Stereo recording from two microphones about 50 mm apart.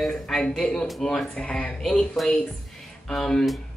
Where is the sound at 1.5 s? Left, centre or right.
Left.